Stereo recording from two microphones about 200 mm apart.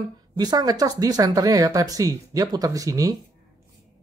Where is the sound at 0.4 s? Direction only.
20° right (ahead or behind).